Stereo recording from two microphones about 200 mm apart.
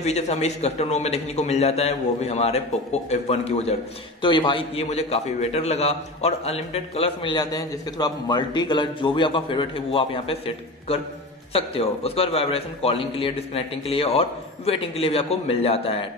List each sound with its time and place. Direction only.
0.0 s a man's voice: 35° left (ahead or behind)